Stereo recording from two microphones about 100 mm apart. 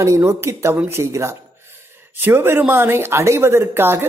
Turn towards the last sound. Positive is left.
turn(degrees=-25)  # may be behind; listen again after turning